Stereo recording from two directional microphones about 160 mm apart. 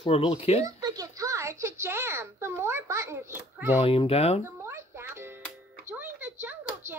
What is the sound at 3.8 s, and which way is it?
Speech, 35° left (ahead or behind).